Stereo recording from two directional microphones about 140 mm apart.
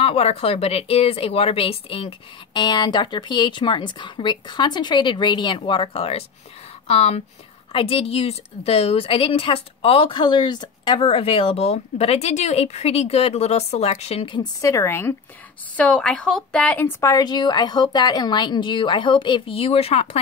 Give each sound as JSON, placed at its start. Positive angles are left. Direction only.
{"t": 0.0, "sound": "a woman's voice", "side_deg": 45}
{"t": 14.6, "sound": "a woman's voice", "side_deg": 20}